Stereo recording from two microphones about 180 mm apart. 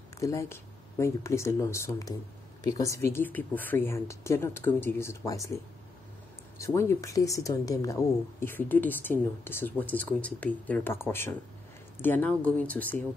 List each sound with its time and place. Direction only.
0.2 s speech: 15° left (ahead or behind)
6.6 s speech: 15° left (ahead or behind)